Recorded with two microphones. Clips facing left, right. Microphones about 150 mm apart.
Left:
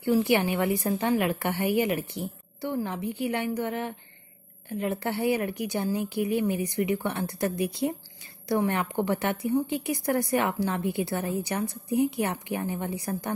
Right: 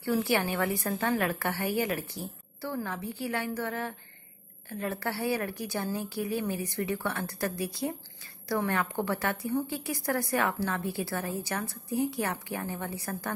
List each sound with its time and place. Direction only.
0.0 s a woman's voice: 20° left (ahead or behind)